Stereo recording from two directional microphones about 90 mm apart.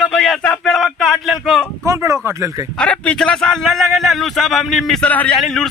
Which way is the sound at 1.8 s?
35° right (ahead or behind).